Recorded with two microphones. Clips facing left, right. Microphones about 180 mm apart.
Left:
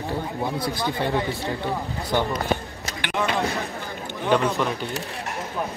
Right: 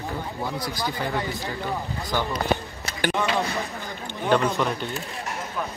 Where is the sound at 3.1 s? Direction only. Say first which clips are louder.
Left 3 dB; centre (ahead or behind).